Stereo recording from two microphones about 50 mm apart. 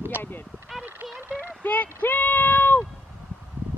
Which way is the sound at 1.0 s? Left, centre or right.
Right.